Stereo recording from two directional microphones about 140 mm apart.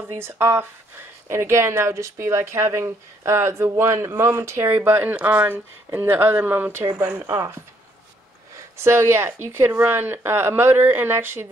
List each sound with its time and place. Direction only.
0.2 s speech: 15° right (ahead or behind)
8.8 s speech: 15° right (ahead or behind)